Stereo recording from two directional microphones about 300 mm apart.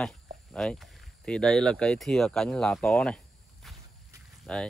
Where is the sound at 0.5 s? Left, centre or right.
Centre.